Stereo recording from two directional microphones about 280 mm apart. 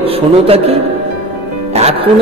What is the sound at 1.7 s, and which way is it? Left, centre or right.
Music, right.